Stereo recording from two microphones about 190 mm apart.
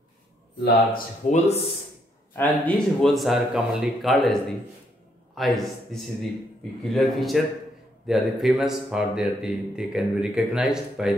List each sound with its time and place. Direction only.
0.9 s speech: 35° left (ahead or behind)
2.3 s a man's voice: 5° left (ahead or behind)